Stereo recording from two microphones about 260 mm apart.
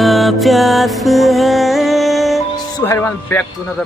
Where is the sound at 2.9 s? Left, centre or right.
Centre.